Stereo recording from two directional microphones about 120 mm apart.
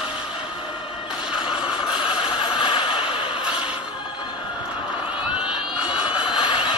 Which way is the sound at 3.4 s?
10° right (ahead or behind).